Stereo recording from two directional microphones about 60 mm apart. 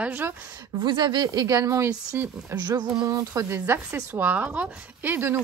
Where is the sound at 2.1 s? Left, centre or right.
Right.